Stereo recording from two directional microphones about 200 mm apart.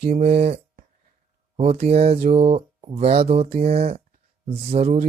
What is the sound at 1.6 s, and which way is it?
Speech, 30° right (ahead or behind).